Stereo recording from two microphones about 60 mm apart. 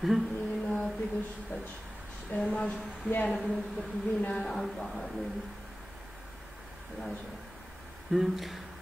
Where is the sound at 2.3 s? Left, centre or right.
Left.